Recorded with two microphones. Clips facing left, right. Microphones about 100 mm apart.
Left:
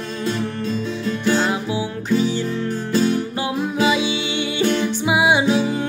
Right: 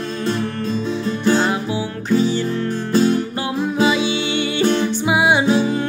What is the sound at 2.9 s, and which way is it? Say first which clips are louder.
Music: right 3 dB; 40° right (ahead or behind).